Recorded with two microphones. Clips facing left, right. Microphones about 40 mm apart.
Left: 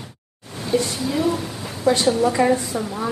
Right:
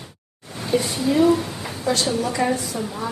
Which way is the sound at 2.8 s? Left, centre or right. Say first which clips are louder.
Left 2 dB; centre.